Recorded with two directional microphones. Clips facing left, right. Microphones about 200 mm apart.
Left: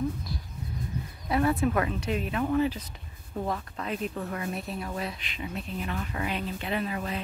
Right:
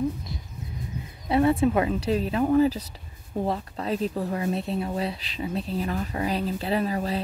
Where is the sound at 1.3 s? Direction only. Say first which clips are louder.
Right 5 dB; 30° right (ahead or behind).